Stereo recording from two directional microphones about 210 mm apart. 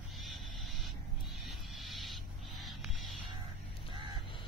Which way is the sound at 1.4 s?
Centre (ahead or behind).